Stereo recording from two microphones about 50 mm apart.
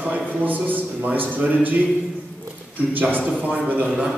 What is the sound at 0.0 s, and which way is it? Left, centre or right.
A man's voice, right.